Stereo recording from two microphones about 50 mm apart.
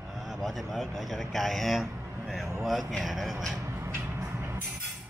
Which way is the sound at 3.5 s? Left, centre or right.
Right.